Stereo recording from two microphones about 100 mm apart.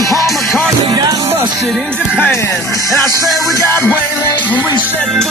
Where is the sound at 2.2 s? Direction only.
25° left (ahead or behind).